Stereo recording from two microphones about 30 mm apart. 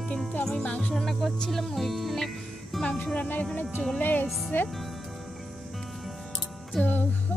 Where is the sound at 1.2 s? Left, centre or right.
Centre.